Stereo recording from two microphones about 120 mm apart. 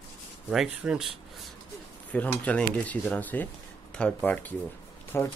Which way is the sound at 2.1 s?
10° left (ahead or behind).